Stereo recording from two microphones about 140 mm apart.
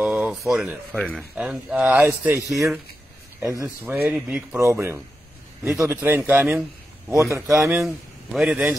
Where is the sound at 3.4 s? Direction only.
20° right (ahead or behind).